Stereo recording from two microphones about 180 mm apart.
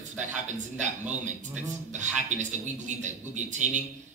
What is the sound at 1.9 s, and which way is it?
A man's voice, 40° right (ahead or behind).